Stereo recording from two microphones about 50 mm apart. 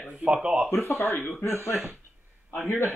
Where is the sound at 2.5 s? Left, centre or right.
Left.